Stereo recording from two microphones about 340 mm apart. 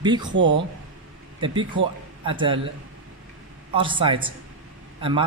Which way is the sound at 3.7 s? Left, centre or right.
Centre.